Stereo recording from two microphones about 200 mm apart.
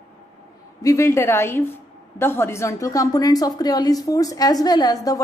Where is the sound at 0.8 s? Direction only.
15° left (ahead or behind).